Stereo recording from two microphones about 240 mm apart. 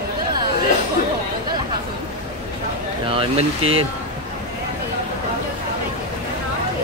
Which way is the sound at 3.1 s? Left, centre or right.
Right.